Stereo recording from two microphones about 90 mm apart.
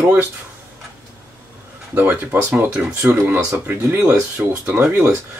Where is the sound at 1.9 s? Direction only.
25° right (ahead or behind).